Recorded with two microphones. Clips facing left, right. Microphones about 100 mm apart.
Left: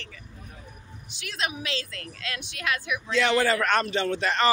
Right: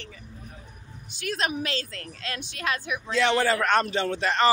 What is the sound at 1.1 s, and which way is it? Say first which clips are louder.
A woman's voice: right 4 dB; 45° right (ahead or behind).